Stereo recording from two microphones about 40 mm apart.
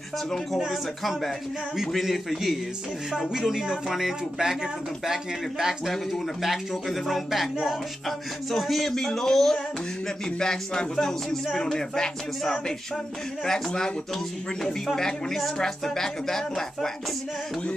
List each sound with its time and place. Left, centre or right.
0.7 s speech: centre
8.5 s speech: centre
13.4 s speech: centre